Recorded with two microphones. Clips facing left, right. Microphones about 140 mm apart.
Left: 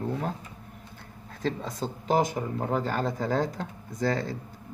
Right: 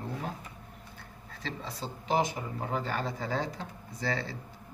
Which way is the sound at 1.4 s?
45° left (ahead or behind).